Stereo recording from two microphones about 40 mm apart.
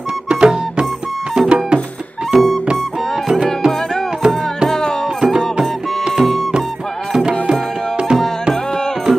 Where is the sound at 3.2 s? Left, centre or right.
Centre.